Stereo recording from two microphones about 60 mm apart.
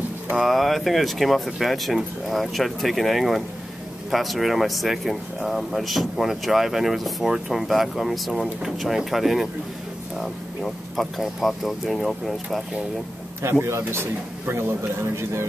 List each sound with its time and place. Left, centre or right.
0.4 s speech: centre
13.4 s a man's voice: right